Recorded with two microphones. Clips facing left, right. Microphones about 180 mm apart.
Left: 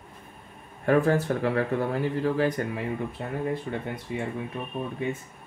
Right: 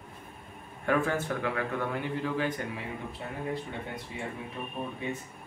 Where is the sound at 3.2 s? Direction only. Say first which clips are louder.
Left 2 dB; 55° left (ahead or behind).